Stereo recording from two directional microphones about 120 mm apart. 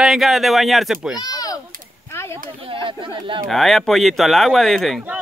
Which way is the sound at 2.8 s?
45° right (ahead or behind).